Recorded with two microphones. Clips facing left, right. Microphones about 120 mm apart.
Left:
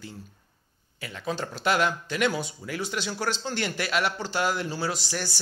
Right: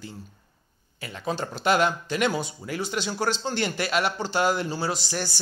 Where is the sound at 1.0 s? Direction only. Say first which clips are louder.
Right 2 dB; 35° right (ahead or behind).